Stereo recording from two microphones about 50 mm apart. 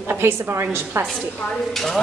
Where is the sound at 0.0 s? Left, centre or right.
Right.